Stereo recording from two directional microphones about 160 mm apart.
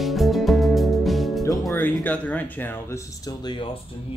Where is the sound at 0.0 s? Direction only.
Centre (ahead or behind).